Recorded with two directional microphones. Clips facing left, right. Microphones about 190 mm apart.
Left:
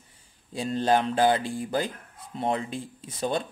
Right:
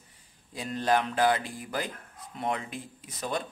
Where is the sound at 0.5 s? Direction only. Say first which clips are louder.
Left 3 dB; 30° left (ahead or behind).